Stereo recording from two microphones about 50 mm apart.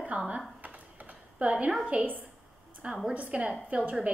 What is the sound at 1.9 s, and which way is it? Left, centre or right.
A woman's voice, right.